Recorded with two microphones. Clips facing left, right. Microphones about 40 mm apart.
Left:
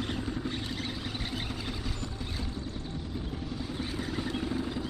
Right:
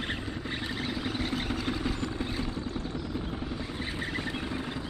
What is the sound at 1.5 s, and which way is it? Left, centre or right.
Vehicle, right.